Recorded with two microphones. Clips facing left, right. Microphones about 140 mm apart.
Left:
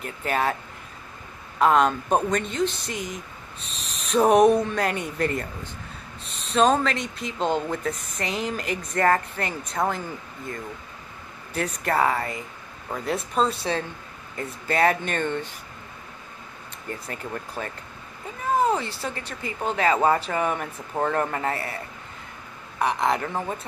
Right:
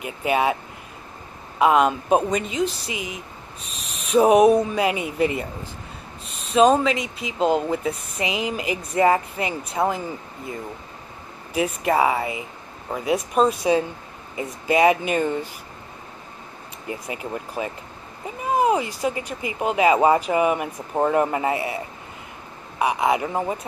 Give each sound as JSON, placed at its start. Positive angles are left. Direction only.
{"t": 0.0, "sound": "speech", "side_deg": -10}
{"t": 1.6, "sound": "speech", "side_deg": -5}
{"t": 3.6, "sound": "speech", "side_deg": 35}
{"t": 4.1, "sound": "speech", "side_deg": -10}
{"t": 6.5, "sound": "speech", "side_deg": -10}
{"t": 11.5, "sound": "speech", "side_deg": -10}
{"t": 16.8, "sound": "speech", "side_deg": -10}
{"t": 18.4, "sound": "a sound", "side_deg": -10}
{"t": 18.9, "sound": "speech", "side_deg": -10}